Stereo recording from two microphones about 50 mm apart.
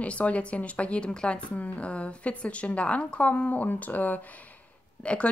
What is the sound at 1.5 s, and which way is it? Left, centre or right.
A woman's voice, left.